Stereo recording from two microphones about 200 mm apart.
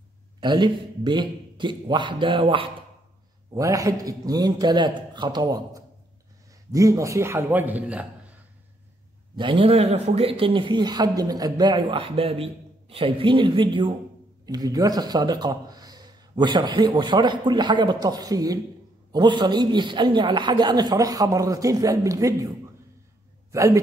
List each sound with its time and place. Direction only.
0.4 s a man's voice: 20° right (ahead or behind)
9.4 s a man's voice: 25° right (ahead or behind)
23.5 s speech: 15° right (ahead or behind)